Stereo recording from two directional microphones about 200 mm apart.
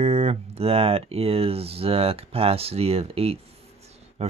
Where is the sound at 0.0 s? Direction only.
30° right (ahead or behind).